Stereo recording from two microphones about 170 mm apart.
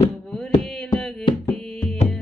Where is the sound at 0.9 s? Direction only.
20° left (ahead or behind).